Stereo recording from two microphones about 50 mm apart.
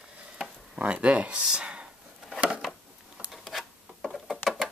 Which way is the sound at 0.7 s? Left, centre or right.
Right.